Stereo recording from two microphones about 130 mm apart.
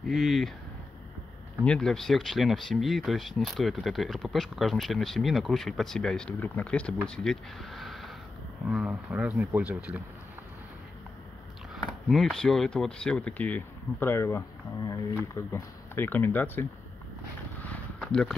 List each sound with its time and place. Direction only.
0.0 s speech: centre (ahead or behind)
1.6 s speech: 5° left (ahead or behind)
12.1 s speech: centre (ahead or behind)
17.6 s a sound: 10° left (ahead or behind)